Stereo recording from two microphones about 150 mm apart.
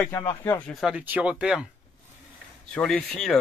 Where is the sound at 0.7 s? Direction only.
Centre (ahead or behind).